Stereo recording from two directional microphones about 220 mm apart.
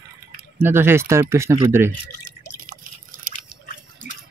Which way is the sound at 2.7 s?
40° right (ahead or behind).